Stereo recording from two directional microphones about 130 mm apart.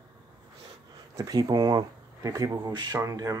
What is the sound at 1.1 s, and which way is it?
Speech, 30° right (ahead or behind).